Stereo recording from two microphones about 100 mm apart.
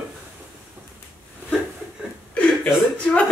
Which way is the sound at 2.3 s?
10° left (ahead or behind).